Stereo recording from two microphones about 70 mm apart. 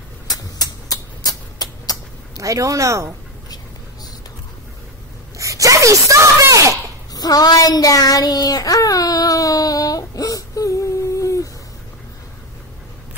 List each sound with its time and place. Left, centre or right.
0.3 s a sound: left
2.3 s speech: right
5.4 s speech: right
7.2 s child singing: left